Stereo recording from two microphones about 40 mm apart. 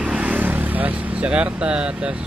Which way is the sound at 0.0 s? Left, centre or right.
Right.